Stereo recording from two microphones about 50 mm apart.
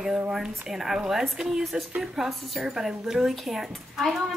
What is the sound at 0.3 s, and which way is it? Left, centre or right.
Speech, centre.